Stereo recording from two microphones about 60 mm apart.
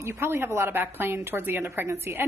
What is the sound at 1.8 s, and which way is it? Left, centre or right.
Speech, right.